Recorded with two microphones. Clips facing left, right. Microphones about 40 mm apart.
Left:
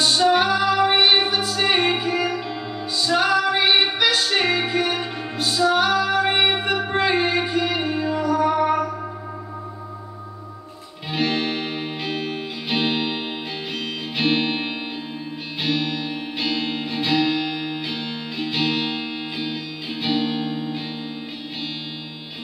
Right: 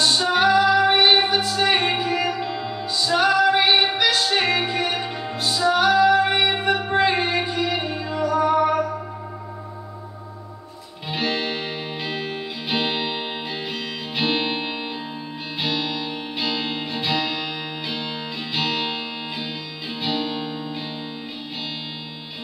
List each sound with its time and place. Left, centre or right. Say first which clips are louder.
0.0 s music: left 1 dB; centre
11.1 s music: left 2 dB; centre